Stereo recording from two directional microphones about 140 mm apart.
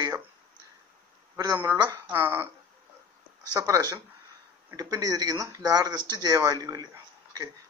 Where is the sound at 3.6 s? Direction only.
25° right (ahead or behind).